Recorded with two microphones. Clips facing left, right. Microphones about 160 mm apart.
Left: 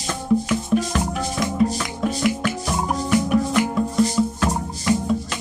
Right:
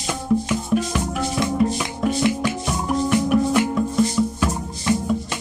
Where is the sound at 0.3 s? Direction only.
Centre (ahead or behind).